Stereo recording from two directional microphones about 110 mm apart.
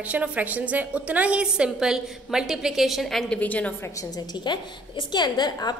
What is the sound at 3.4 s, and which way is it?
Speech, 15° left (ahead or behind).